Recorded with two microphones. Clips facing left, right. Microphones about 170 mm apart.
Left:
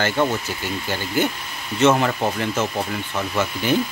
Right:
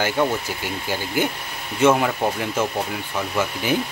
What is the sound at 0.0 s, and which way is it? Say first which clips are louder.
Speech: even; 10° right (ahead or behind).